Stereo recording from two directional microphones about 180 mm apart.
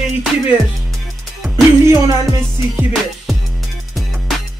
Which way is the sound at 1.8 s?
15° right (ahead or behind).